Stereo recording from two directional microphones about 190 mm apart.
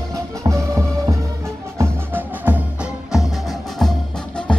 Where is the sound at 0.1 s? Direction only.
15° right (ahead or behind).